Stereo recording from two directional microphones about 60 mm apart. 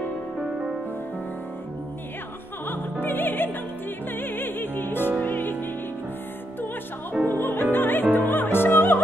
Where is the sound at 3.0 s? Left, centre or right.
Left.